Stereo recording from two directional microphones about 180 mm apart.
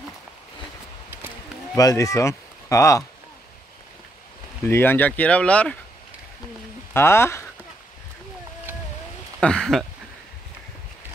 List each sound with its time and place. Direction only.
1.8 s speech: 20° left (ahead or behind)
4.6 s speech: 10° left (ahead or behind)
6.9 s speech: 15° left (ahead or behind)
9.4 s speech: 5° left (ahead or behind)